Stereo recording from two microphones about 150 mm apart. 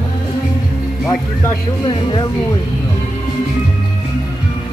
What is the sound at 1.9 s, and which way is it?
Speech, 35° left (ahead or behind).